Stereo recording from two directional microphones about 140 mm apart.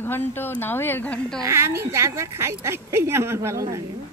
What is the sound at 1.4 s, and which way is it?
Speech, 20° right (ahead or behind).